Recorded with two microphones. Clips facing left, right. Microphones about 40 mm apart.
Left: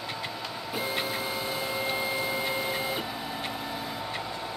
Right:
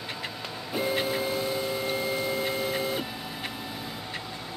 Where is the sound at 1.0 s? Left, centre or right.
Centre.